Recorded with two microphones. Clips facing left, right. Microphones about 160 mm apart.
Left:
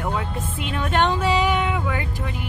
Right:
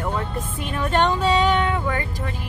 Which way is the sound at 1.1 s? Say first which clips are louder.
Right 2 dB; 5° left (ahead or behind).